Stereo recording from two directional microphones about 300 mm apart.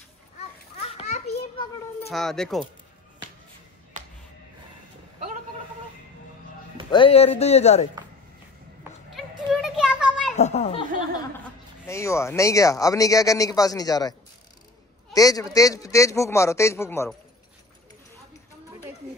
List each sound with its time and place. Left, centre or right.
0.7 s children playing: left
2.0 s speech: centre
6.9 s speech: centre
9.1 s children playing: centre
10.3 s a child's voice: left
11.9 s speech: centre
15.1 s speech: centre